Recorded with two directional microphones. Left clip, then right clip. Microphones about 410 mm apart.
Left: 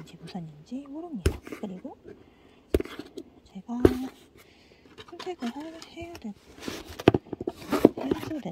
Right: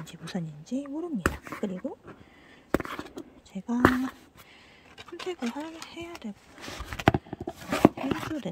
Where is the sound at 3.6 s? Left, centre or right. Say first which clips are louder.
Right 6 dB; right.